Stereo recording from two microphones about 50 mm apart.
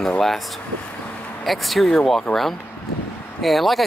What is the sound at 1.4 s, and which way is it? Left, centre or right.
Speech, centre.